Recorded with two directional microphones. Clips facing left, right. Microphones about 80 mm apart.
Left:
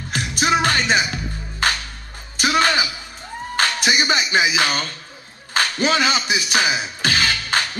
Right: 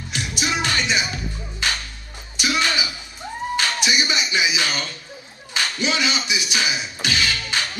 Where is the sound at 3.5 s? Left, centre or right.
Left.